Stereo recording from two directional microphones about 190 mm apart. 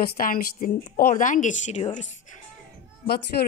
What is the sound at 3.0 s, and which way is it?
Speech, 55° left (ahead or behind).